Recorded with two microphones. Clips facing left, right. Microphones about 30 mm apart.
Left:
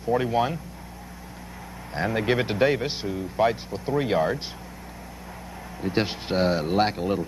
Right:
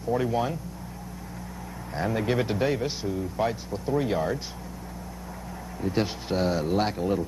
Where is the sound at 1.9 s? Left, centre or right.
Left.